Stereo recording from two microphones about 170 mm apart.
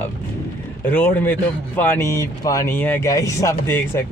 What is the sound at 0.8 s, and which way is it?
A man's voice, 10° left (ahead or behind).